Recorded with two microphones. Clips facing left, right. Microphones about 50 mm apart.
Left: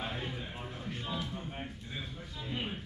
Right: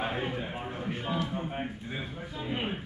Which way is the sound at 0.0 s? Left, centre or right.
Right.